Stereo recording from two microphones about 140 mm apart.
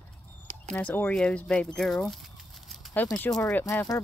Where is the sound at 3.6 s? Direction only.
20° left (ahead or behind).